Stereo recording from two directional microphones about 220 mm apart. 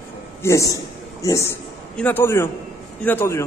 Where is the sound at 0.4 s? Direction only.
15° left (ahead or behind).